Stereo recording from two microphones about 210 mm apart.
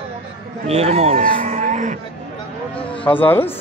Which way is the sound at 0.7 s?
30° right (ahead or behind).